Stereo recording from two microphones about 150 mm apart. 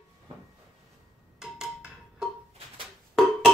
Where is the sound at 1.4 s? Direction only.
5° right (ahead or behind).